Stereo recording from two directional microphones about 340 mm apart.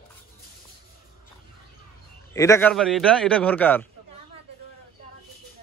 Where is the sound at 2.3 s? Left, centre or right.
Centre.